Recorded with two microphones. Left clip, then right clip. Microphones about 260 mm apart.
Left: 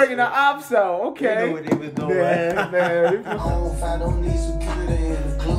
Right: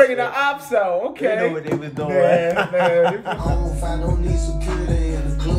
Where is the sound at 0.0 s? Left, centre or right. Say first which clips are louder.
Right 1 dB; left.